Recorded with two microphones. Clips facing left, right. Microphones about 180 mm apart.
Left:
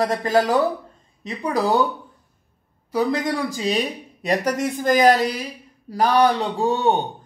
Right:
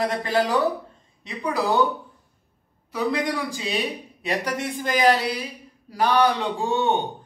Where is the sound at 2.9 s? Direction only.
40° left (ahead or behind).